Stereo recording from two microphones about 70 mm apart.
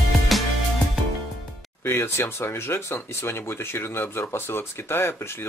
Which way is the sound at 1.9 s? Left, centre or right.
Left.